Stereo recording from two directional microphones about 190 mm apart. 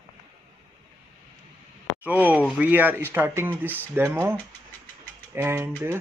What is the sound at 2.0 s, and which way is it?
Speech, 10° right (ahead or behind).